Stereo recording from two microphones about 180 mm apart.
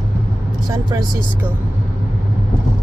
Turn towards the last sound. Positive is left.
turn(degrees=-20)  # may be behind; listen again after turning